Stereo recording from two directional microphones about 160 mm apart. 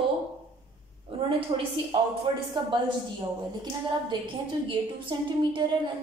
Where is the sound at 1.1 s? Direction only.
35° right (ahead or behind).